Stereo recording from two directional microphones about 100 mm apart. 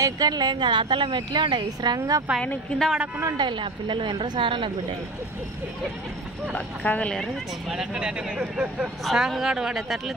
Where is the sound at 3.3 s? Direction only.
50° right (ahead or behind).